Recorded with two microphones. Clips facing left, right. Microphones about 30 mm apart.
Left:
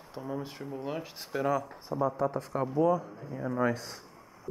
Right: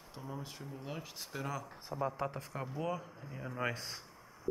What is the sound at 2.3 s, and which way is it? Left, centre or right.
Speech, centre.